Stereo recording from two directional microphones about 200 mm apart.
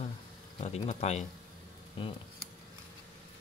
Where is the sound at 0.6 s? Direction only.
35° left (ahead or behind).